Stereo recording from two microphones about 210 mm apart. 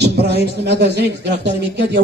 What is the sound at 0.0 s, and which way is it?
A man's voice, 50° right (ahead or behind).